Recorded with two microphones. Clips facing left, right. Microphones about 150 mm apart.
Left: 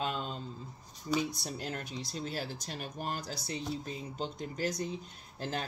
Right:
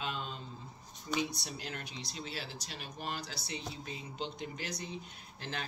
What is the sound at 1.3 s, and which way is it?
Speech, 45° left (ahead or behind).